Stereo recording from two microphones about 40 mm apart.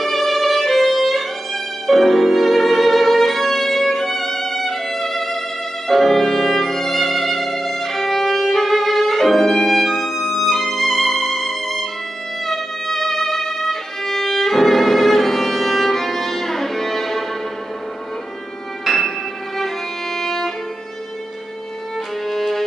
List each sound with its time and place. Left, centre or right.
0.0 s music: centre
12.4 s violin: centre
18.9 s music: centre
20.2 s violin: centre
22.3 s music: centre